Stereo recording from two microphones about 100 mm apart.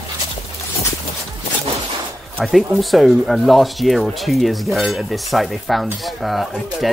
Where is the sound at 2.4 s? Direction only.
Centre (ahead or behind).